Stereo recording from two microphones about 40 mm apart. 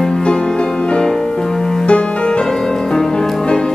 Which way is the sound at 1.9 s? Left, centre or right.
Left.